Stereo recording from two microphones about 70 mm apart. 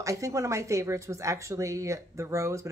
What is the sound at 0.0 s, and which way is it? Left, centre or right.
Speech, right.